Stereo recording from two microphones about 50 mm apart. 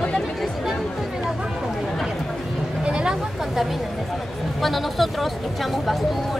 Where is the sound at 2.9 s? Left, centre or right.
Centre.